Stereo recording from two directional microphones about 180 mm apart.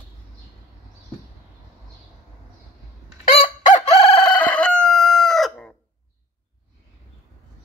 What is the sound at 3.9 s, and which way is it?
Chicken, 35° left (ahead or behind).